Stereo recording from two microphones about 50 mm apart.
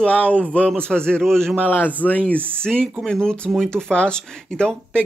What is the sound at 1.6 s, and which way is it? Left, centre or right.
Speech, left.